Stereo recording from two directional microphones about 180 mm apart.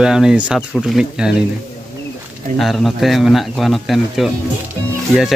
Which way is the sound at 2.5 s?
Centre (ahead or behind).